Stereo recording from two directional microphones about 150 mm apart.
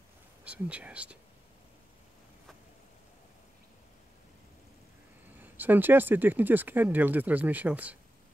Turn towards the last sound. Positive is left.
turn(degrees=-10)  # may be behind; listen again after turning